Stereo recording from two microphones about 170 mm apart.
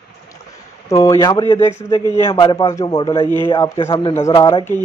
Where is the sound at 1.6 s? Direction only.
15° left (ahead or behind).